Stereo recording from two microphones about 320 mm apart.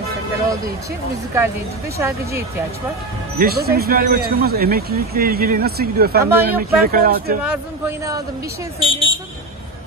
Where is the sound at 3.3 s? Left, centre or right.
Right.